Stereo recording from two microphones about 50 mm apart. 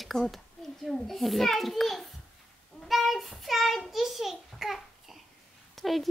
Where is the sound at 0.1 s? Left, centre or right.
Centre.